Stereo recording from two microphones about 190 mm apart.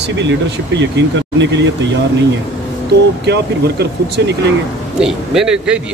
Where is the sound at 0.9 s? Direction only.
70° right (ahead or behind).